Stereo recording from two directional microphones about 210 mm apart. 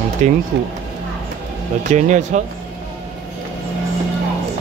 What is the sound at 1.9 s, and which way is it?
Speech, 35° right (ahead or behind).